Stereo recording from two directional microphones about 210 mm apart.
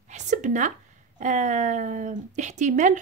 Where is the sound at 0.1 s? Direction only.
35° right (ahead or behind).